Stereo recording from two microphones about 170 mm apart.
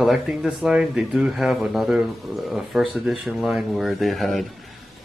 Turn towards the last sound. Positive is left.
turn(degrees=0)  # may be behind; listen again after turning